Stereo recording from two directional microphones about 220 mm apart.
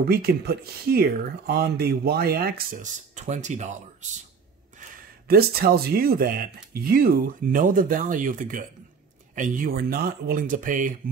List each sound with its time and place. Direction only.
0.0 s speech: 45° right (ahead or behind)
5.3 s speech: 45° right (ahead or behind)